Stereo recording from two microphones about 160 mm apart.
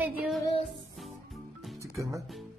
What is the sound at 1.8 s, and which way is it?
Music, 20° right (ahead or behind).